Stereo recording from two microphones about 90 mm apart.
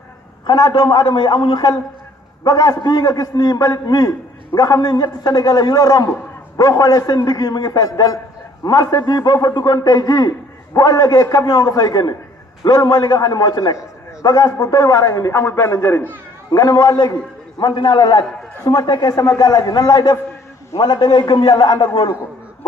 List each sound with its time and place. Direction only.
0.5 s a man's voice: 55° left (ahead or behind); by 16.1 s 25° left (ahead or behind)
16.5 s a man's voice: 45° left (ahead or behind)